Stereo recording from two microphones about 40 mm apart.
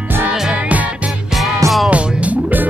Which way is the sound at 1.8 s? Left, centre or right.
Right.